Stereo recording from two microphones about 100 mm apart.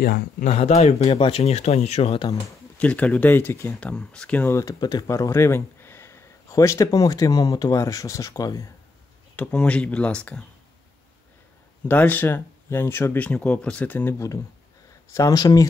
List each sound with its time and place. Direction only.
0.6 s speech: 90° left
1.0 s speech: 70° left (ahead or behind); by 2.2 s 90° left
2.8 s speech: 15° left (ahead or behind)
4.5 s speech: 30° left (ahead or behind)
4.7 s speech: 45° left (ahead or behind)
5.0 s speech: 30° left (ahead or behind)
9.4 s speech: 10° left (ahead or behind)
11.9 s speech: 20° left (ahead or behind); by 15.6 s 40° left (ahead or behind)